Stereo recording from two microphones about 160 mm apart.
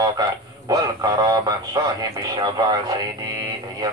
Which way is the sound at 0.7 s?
25° right (ahead or behind).